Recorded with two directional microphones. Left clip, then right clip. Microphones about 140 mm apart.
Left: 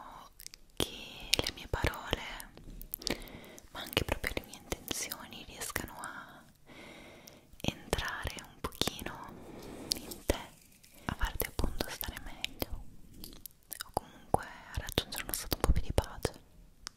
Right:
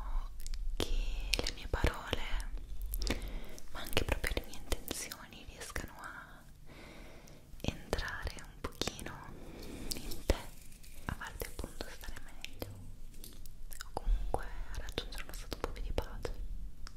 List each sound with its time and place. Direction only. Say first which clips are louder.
0.0 s a sound: left 3 dB; 35° left (ahead or behind)
0.4 s whispering: left 4 dB; 25° left (ahead or behind)
5.0 s whispering: left 4 dB; 35° left (ahead or behind)
11.1 s whispering: left 5 dB; 40° left (ahead or behind)
13.7 s whispering: left 6 dB; 40° left (ahead or behind)
16.9 s finger snapping: left 8 dB; 45° left (ahead or behind)